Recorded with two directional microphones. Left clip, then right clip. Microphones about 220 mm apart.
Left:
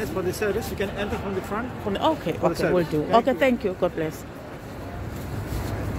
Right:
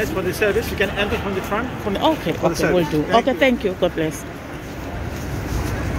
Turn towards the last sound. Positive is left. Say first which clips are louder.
# right 5 dB
turn(degrees=5)  # may be behind; listen again after turning